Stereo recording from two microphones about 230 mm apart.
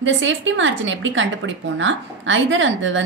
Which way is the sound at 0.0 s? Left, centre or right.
Right.